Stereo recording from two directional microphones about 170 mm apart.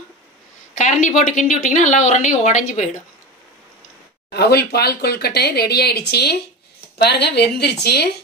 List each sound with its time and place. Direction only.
0.7 s a woman's voice: 45° left (ahead or behind)
4.3 s speech: 70° left (ahead or behind)